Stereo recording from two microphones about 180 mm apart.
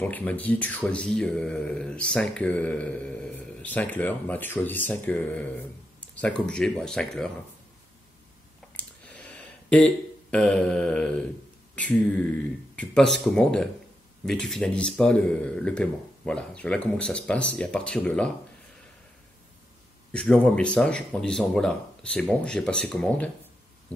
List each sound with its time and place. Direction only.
0.0 s speech: 10° left (ahead or behind)
8.7 s a sound: 5° left (ahead or behind)
11.7 s speech: 10° left (ahead or behind)
20.1 s speech: 5° left (ahead or behind)